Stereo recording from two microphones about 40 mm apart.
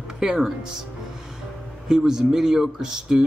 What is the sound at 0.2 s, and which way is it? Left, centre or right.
Speech, centre.